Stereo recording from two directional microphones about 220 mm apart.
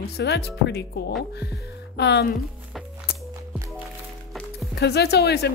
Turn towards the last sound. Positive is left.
turn(degrees=45)  # may be behind; listen again after turning